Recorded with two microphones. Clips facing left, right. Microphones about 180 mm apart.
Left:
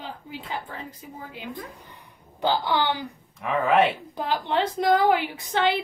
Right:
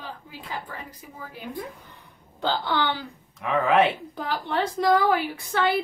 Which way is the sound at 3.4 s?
Centre (ahead or behind).